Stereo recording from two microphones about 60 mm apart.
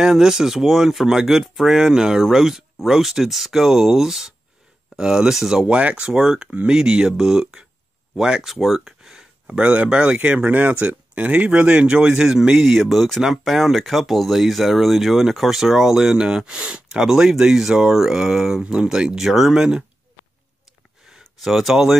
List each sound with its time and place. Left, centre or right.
0.0 s speech: centre
5.7 s speech: right
21.2 s speech: centre